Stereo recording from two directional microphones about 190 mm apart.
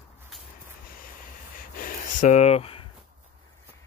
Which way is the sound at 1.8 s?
45° left (ahead or behind).